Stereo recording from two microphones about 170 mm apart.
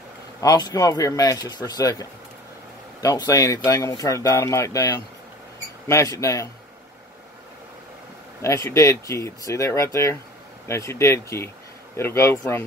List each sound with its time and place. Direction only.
0.4 s speech: 20° left (ahead or behind)
8.4 s speech: 15° left (ahead or behind)